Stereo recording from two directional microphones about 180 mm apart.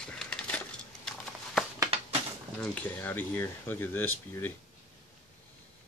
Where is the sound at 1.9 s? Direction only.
30° right (ahead or behind).